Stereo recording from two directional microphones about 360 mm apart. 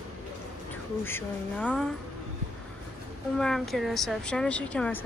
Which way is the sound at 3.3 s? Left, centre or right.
Centre.